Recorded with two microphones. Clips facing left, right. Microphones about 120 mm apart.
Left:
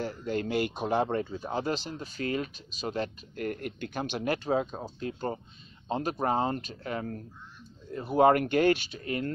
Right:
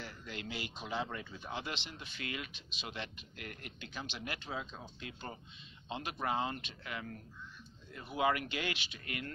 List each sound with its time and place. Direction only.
0.0 s speech: 40° left (ahead or behind)